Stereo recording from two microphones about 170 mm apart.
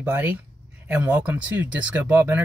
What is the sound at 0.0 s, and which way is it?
Speech, 10° right (ahead or behind).